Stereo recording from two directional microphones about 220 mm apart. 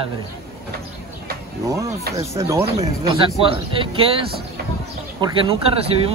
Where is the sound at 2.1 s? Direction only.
15° right (ahead or behind).